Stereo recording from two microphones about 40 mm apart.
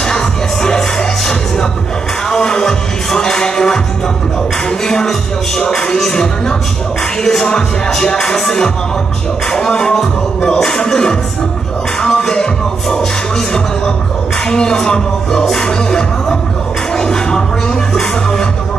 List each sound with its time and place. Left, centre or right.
0.1 s music: centre
4.8 s music: centre
14.5 s speech: centre
15.6 s music: centre